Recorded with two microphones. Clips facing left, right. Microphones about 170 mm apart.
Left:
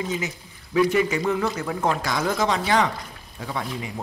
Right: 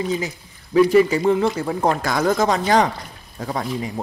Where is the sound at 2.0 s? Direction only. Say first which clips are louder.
Right 5 dB; 50° right (ahead or behind).